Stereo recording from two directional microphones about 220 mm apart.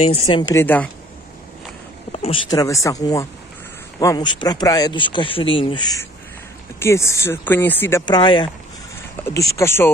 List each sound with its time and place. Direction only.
0.3 s speech: 15° left (ahead or behind)
2.1 s a sound: 25° left (ahead or behind)
2.5 s speech: 15° left (ahead or behind)